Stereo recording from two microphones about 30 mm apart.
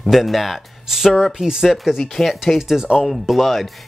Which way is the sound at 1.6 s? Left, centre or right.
Centre.